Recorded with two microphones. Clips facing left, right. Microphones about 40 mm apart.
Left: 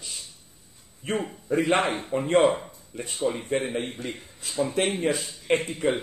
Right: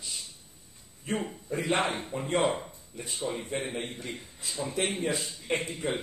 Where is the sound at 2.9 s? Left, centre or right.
Left.